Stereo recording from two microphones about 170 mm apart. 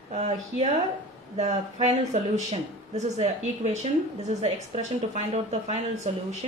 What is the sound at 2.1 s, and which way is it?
Speech, 40° right (ahead or behind).